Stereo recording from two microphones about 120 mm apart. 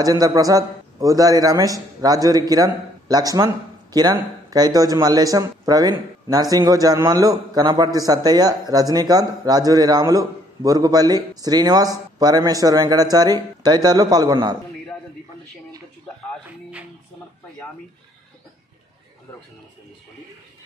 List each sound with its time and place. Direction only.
0.0 s a man's voice: 30° right (ahead or behind)